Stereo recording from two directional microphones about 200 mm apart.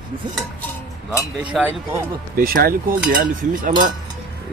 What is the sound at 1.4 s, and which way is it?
Speech, 5° right (ahead or behind).